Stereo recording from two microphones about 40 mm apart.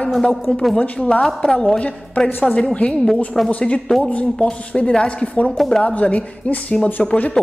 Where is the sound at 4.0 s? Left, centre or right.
Left.